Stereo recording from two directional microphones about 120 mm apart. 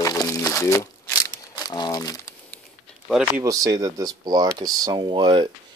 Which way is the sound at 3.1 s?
5° left (ahead or behind).